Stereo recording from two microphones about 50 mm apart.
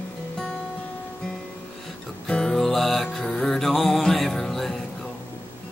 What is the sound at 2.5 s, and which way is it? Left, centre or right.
Music, centre.